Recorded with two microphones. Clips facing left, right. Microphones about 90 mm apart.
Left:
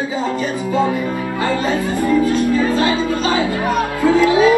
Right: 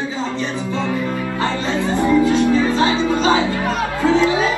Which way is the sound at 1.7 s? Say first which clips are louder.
Even; 25° right (ahead or behind).